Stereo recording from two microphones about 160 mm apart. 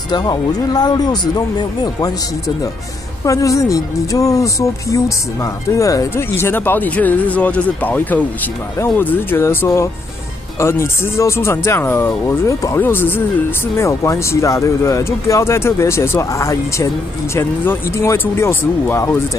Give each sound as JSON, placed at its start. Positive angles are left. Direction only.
{"t": 0.1, "sound": "speech", "side_deg": 25}